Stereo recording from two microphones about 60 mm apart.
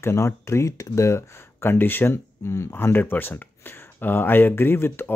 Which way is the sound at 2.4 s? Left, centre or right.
Left.